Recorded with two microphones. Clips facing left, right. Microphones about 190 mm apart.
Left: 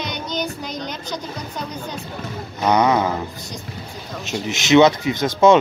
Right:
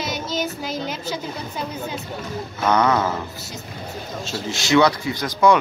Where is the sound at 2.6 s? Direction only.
15° left (ahead or behind).